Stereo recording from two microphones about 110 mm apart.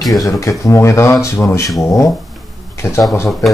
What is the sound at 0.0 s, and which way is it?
Speech, 30° left (ahead or behind).